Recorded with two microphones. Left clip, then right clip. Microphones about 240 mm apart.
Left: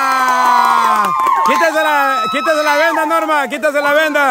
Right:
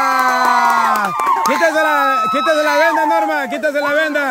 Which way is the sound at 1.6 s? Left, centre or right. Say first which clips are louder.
Left 1 dB; centre.